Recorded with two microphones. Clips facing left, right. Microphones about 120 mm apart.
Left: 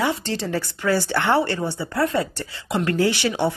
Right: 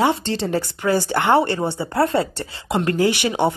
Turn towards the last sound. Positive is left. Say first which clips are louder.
# right 2 dB
turn(degrees=-15)  # may be behind; listen again after turning